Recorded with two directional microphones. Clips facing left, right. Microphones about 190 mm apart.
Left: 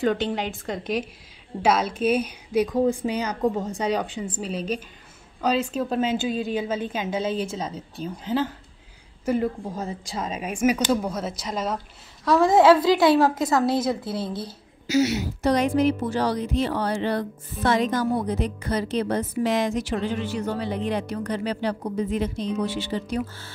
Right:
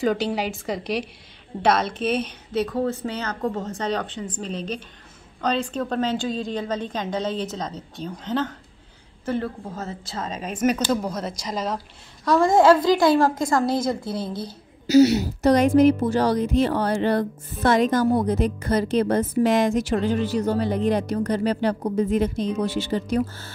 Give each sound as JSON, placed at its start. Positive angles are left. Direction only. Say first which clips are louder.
{"t": 0.0, "sound": "a woman's voice", "louder": "right 1 dB", "side_deg": 0}
{"t": 14.9, "sound": "speech", "louder": "right 6 dB", "side_deg": -35}